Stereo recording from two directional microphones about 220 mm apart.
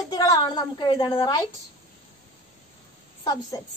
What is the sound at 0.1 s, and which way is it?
A woman's voice, 15° left (ahead or behind).